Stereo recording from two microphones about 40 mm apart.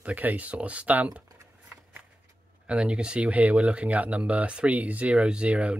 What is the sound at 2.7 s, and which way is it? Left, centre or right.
Speech, right.